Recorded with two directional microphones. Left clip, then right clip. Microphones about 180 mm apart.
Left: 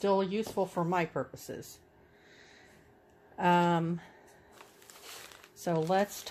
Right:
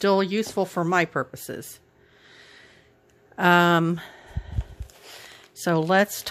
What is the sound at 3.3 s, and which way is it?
Speech, 50° right (ahead or behind).